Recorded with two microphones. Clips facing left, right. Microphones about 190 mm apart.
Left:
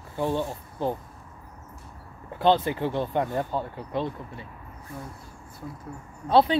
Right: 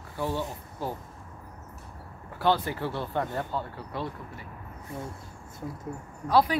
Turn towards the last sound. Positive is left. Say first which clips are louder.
# left 3 dB
turn(degrees=25)  # may be behind; listen again after turning